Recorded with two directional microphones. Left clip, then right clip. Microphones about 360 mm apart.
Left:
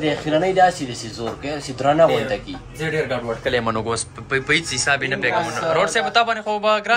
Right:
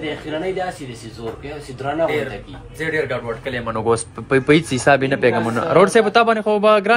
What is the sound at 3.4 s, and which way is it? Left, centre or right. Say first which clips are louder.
Speech: left 8 dB; centre.